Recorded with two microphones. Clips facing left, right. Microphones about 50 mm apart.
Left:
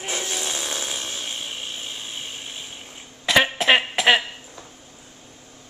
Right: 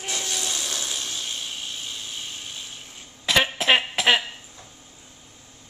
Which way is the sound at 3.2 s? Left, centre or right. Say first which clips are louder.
Left 3 dB; centre.